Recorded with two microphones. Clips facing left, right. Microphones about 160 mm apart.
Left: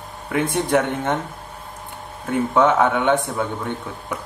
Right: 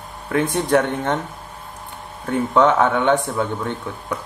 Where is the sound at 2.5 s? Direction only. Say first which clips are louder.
Right 1 dB; 15° left (ahead or behind).